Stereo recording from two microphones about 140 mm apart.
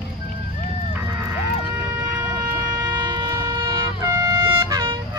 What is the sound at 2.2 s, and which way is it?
Shofar, 25° right (ahead or behind).